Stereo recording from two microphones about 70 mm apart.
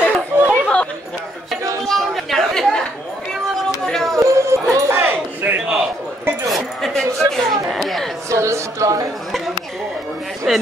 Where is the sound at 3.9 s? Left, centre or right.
Centre.